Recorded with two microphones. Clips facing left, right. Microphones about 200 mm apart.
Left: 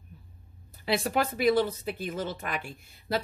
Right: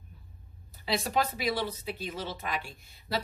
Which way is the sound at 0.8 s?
55° left (ahead or behind).